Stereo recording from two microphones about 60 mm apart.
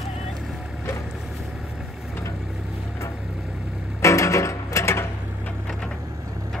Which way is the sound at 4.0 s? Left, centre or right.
Left.